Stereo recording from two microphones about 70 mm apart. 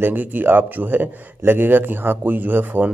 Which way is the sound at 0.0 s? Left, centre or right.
Right.